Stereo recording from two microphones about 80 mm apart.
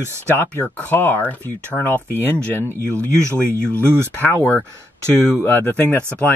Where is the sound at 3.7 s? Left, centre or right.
Right.